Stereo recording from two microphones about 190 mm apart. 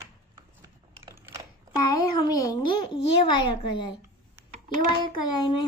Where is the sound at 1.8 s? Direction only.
20° left (ahead or behind).